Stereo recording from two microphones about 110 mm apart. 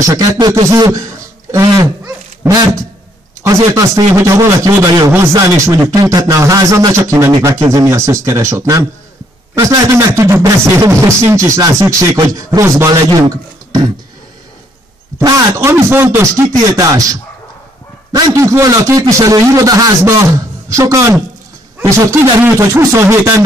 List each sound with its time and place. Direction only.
0.0 s a man's voice: 30° right (ahead or behind)
9.9 s speech: 25° right (ahead or behind)
15.2 s a man's voice: 30° right (ahead or behind)